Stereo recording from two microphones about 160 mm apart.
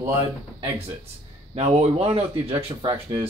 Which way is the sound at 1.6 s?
40° right (ahead or behind).